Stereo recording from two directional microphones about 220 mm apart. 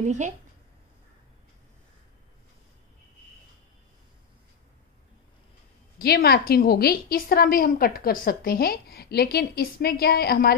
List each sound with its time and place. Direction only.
0.0 s a woman's voice: 35° right (ahead or behind)
5.9 s a woman's voice: 45° left (ahead or behind)